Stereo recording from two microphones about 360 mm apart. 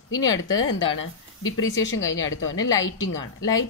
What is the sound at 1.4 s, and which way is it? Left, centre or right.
Speech, left.